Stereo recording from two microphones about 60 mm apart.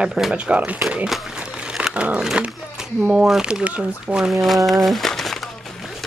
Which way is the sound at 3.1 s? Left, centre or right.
Centre.